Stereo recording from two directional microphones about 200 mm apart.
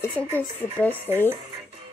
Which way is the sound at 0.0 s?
10° left (ahead or behind).